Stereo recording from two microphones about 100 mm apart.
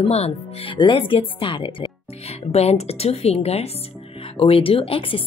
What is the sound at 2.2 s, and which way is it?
A woman's voice, 90° left.